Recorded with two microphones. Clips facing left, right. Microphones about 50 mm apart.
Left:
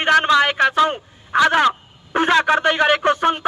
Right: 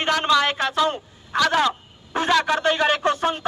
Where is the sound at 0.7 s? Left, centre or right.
Left.